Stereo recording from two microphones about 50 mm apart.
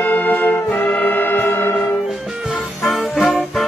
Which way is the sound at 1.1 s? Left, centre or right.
Left.